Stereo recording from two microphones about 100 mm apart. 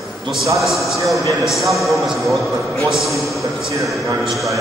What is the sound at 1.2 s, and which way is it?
Speech, 35° right (ahead or behind).